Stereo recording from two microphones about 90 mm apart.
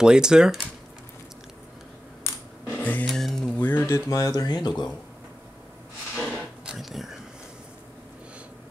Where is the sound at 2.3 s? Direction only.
30° left (ahead or behind).